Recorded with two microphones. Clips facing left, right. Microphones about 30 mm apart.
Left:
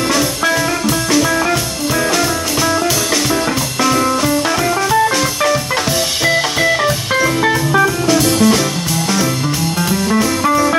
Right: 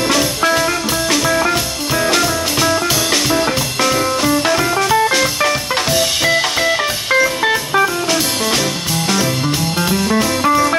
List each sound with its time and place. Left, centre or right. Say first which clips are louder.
0.1 s music: right 1 dB; centre
3.8 s music: left 2 dB; centre
9.8 s music: left 1 dB; centre